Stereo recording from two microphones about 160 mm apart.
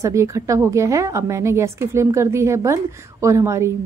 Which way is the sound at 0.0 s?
20° right (ahead or behind).